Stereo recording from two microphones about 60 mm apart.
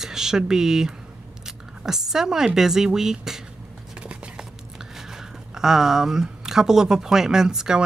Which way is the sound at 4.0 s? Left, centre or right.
Centre.